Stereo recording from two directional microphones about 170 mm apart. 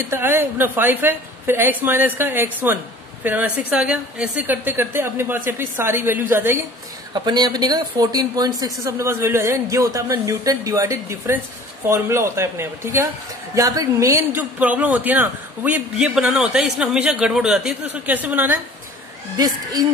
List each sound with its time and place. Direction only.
0.1 s a woman's voice: 15° right (ahead or behind)
7.2 s a woman's voice: 25° right (ahead or behind)
19.3 s speech: 20° right (ahead or behind)